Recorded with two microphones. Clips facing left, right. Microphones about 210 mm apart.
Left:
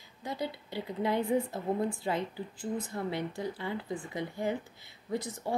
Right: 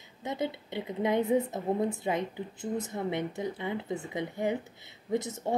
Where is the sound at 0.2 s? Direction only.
20° right (ahead or behind).